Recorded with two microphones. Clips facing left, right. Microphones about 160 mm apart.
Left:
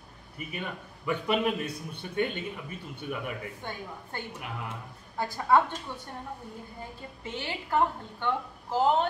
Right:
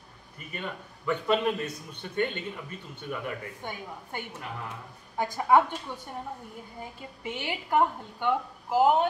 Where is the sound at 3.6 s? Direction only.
15° right (ahead or behind).